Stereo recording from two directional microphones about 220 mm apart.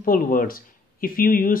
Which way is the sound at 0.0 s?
40° left (ahead or behind).